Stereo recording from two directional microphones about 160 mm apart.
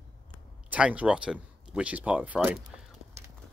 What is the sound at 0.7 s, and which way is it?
Speech, 10° right (ahead or behind).